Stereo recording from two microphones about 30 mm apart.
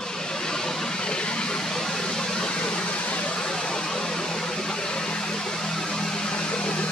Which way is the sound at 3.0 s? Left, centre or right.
Left.